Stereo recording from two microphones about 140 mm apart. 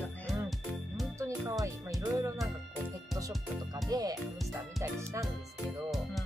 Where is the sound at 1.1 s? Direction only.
20° right (ahead or behind).